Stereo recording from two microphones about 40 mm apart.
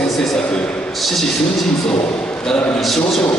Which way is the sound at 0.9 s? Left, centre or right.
Centre.